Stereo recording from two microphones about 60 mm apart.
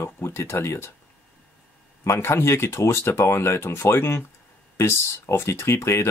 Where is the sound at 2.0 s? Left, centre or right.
Left.